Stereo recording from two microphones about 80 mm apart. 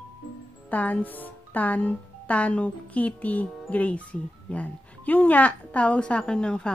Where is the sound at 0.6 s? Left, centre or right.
Centre.